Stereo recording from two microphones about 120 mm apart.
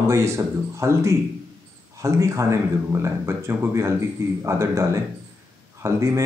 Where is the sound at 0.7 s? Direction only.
25° right (ahead or behind).